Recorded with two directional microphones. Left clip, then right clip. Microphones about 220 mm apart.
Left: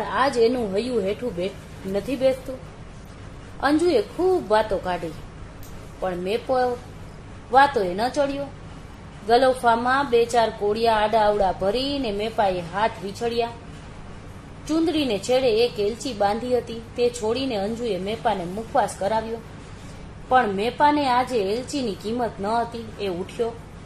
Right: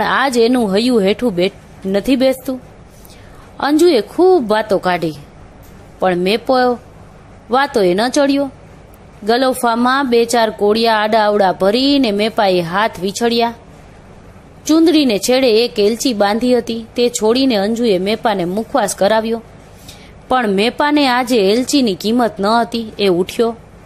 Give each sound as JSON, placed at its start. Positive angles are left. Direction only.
{"t": 0.0, "sound": "a woman's voice", "side_deg": -40}
{"t": 3.6, "sound": "a woman's voice", "side_deg": -40}
{"t": 14.7, "sound": "a woman's voice", "side_deg": -40}
{"t": 20.2, "sound": "a woman's voice", "side_deg": -45}